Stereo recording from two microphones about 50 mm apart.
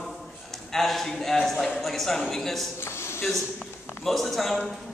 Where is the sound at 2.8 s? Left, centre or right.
Left.